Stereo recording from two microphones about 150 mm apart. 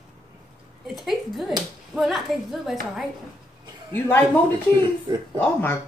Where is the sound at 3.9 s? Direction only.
15° left (ahead or behind).